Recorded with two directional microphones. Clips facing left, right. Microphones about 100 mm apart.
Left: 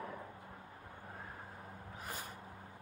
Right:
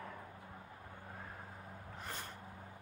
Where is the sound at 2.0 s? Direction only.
5° left (ahead or behind).